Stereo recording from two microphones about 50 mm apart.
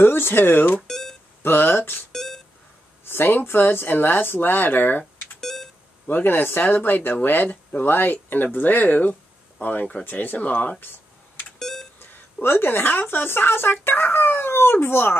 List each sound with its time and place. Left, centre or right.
0.0 s speech: left
0.8 s a sound: centre
1.4 s speech: left
2.1 s beep: centre
3.1 s speech: left
5.4 s beep: centre
6.0 s speech: left
10.8 s a sound: left
11.6 s beep: centre
12.0 s speech: left